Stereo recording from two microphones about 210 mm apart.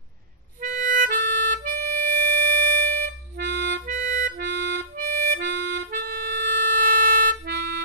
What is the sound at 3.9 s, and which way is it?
Music, 40° right (ahead or behind).